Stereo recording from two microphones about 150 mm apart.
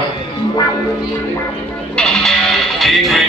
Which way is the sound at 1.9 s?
5° left (ahead or behind).